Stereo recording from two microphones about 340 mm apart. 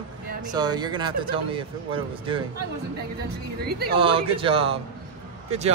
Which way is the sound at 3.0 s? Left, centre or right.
Right.